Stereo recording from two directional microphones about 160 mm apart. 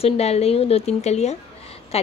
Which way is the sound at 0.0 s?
40° left (ahead or behind).